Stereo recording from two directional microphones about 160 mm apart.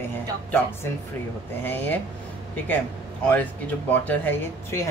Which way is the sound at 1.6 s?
10° left (ahead or behind).